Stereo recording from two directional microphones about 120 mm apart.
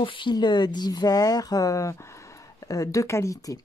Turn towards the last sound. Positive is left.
turn(degrees=30)  # may be behind; listen again after turning